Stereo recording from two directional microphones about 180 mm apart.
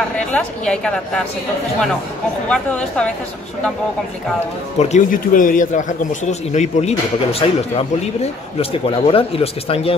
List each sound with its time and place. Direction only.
0.3 s a woman's voice: 5° left (ahead or behind)
2.5 s a woman's voice: 5° left (ahead or behind)
4.7 s a man's voice: 40° left (ahead or behind)